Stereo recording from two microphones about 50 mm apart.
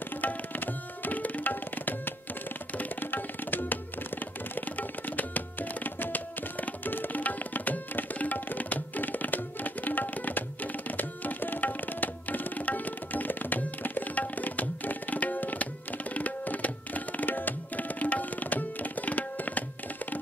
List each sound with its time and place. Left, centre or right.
0.2 s tabla: left
4.6 s music: left
16.2 s tabla: left